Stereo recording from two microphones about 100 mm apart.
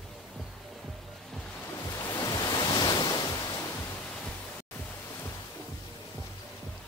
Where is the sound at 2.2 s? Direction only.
40° left (ahead or behind).